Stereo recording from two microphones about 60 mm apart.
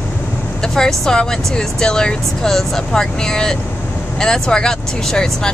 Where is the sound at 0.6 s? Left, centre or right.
Centre.